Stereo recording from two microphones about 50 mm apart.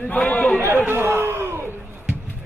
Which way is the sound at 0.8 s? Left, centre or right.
Right.